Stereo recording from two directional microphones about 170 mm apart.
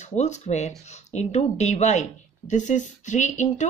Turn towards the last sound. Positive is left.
turn(degrees=45)  # may be behind; listen again after turning